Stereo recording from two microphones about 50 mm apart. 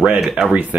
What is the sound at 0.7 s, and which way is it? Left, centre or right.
Speech, right.